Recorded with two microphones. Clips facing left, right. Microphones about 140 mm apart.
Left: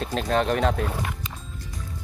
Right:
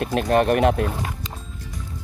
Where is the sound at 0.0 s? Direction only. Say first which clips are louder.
Right 5 dB; 55° right (ahead or behind).